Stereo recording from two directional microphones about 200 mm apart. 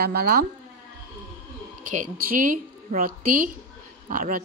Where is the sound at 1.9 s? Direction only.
45° right (ahead or behind).